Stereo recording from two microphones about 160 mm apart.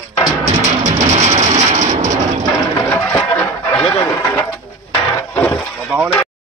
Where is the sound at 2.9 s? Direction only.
15° left (ahead or behind).